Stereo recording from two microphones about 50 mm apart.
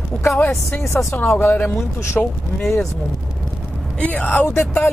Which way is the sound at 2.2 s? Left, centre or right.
Left.